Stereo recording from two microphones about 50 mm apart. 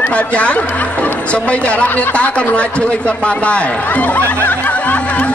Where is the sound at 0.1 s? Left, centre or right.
Left.